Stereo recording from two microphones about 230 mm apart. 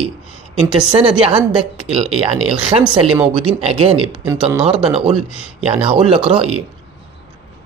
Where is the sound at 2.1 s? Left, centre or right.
Centre.